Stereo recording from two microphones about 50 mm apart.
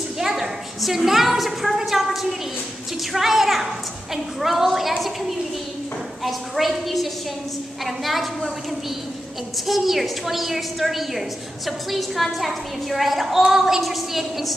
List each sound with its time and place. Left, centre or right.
0.2 s a woman's voice: centre
6.2 s a woman's voice: centre
9.7 s a woman's voice: centre